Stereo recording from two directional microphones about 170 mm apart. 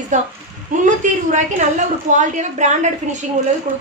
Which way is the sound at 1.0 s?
45° right (ahead or behind).